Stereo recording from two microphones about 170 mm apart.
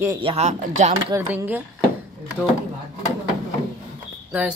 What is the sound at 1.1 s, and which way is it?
Speech, 10° right (ahead or behind).